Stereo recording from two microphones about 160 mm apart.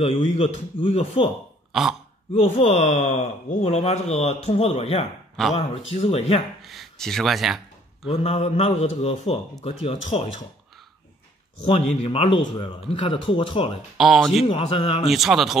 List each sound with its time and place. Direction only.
0.0 s speech: 35° left (ahead or behind)
1.7 s speech: centre (ahead or behind)
2.3 s speech: 40° left (ahead or behind)
6.6 s a sound: centre (ahead or behind)
8.1 s speech: 35° left (ahead or behind)
11.6 s speech: 40° left (ahead or behind)
13.9 s speech: centre (ahead or behind)
14.4 s speech: 35° left (ahead or behind)
15.0 s speech: centre (ahead or behind)